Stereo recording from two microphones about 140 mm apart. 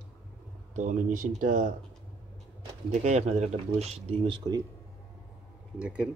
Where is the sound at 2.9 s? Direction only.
55° right (ahead or behind).